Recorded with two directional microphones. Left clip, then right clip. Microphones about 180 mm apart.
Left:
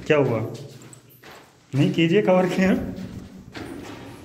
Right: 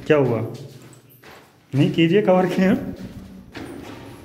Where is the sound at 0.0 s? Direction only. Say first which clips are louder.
Right 2 dB; 30° right (ahead or behind).